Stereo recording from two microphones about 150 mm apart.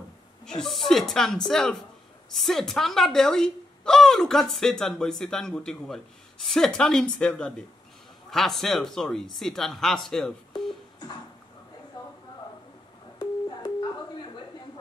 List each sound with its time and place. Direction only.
0.5 s speech: centre (ahead or behind)
13.2 s busy signal: 30° left (ahead or behind)